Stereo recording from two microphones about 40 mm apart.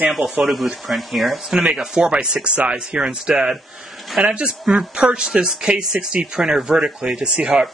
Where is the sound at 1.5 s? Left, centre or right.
Right.